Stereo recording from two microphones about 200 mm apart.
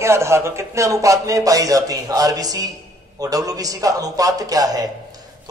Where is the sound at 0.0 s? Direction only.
15° right (ahead or behind).